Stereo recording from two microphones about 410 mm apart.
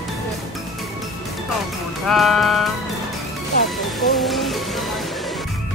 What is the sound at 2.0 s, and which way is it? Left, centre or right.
Music, centre.